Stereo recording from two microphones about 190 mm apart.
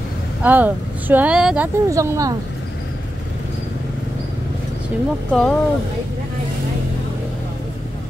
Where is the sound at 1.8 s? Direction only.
15° right (ahead or behind).